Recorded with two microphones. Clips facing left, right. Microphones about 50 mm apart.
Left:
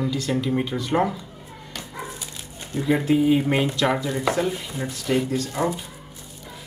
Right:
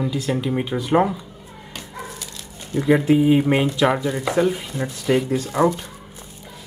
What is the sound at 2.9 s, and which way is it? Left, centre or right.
Speech, centre.